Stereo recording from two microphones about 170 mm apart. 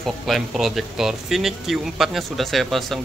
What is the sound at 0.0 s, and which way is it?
Speech, centre (ahead or behind).